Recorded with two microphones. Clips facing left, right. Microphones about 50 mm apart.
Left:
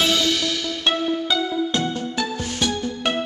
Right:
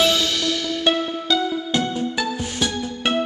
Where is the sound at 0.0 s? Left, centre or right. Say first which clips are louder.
Right 1 dB; centre.